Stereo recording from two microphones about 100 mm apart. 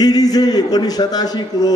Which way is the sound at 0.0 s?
40° left (ahead or behind).